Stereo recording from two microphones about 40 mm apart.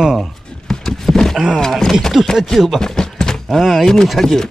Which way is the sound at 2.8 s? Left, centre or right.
Centre.